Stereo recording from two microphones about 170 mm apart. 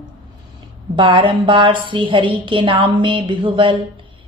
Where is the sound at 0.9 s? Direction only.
30° right (ahead or behind).